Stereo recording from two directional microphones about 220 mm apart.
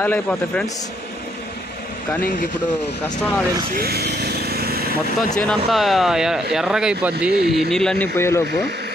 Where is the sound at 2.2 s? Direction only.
40° left (ahead or behind).